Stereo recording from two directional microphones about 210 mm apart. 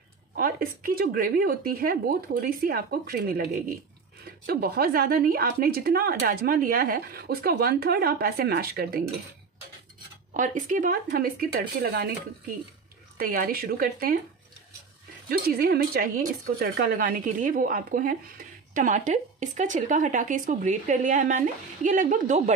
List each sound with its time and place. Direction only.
0.4 s a woman's voice: 45° right (ahead or behind)
10.3 s a woman's voice: 40° right (ahead or behind)
13.2 s a woman's voice: 45° right (ahead or behind)
15.2 s a woman's voice: 45° right (ahead or behind)